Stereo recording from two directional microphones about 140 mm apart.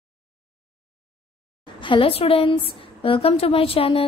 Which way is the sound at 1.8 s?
35° left (ahead or behind).